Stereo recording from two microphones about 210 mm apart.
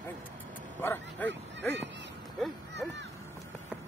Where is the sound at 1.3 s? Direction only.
55° right (ahead or behind).